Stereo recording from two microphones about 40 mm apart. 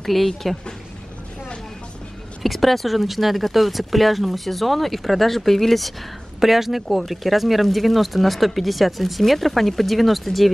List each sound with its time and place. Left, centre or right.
0.0 s speech: centre
2.4 s speech: centre
6.4 s speech: centre